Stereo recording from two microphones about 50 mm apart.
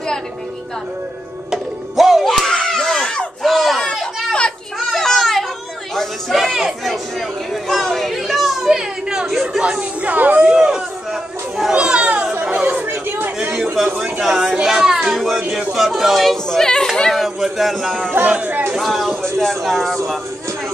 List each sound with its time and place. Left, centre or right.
1.5 s music: centre
3.4 s a sound: centre
4.0 s children playing: centre
5.9 s chatter: centre
9.6 s speech: right
10.4 s speech: centre
11.7 s children playing: right
12.4 s chatter: right
12.8 s chatter: right
14.2 s speech: centre
16.4 s speech: centre
17.1 s speech: centre
18.2 s speech: right
18.8 s speech: centre